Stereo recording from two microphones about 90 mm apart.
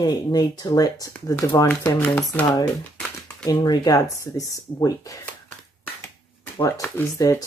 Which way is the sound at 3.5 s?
45° left (ahead or behind).